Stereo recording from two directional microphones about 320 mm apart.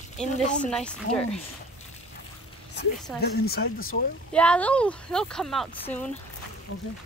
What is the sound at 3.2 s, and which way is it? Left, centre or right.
Speech, left.